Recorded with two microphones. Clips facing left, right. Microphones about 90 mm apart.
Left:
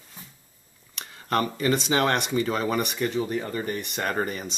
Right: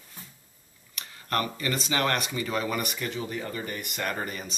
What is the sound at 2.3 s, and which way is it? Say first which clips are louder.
Speech: left 5 dB; 30° left (ahead or behind).